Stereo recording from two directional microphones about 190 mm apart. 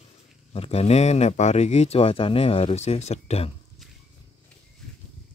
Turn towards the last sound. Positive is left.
turn(degrees=35)  # may be behind; listen again after turning